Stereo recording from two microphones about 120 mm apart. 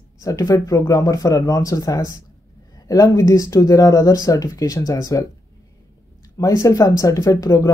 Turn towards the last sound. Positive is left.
turn(degrees=30)  # may be behind; listen again after turning